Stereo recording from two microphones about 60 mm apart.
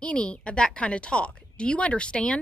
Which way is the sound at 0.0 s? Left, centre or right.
Centre.